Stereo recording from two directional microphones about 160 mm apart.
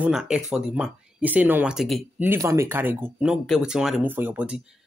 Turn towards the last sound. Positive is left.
turn(degrees=-5)  # may be behind; listen again after turning